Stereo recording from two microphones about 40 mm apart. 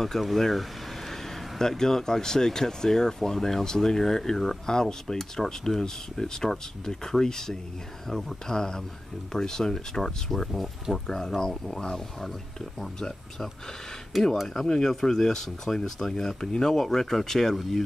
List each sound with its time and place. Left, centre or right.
0.2 s speech: centre
11.1 s speech: centre
14.4 s speech: centre